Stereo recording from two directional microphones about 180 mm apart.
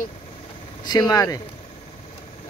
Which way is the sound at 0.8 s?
20° left (ahead or behind).